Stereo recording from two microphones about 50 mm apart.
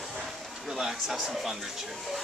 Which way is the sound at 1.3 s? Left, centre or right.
Centre.